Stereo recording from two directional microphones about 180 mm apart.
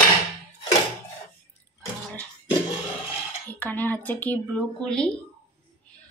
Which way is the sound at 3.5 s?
10° left (ahead or behind).